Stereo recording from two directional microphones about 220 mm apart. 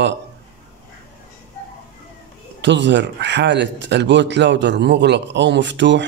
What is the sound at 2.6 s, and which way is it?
Speech, 55° right (ahead or behind).